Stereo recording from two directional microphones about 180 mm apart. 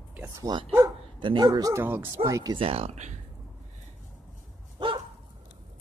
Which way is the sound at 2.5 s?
35° right (ahead or behind).